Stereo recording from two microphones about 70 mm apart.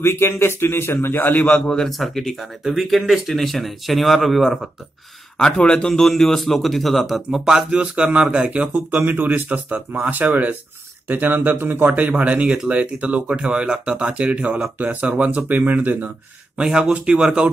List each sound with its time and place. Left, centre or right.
0.0 s speech: left
1.4 s a man's voice: centre
5.4 s a man's voice: centre
9.0 s speech: right
16.5 s speech: centre